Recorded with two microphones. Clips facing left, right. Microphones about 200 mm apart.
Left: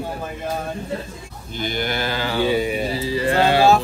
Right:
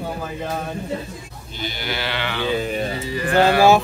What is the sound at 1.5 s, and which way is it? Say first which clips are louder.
Livestock: left 4 dB; 50° left (ahead or behind).